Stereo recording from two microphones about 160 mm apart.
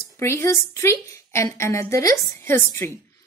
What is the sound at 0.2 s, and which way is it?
A woman's voice, 15° left (ahead or behind).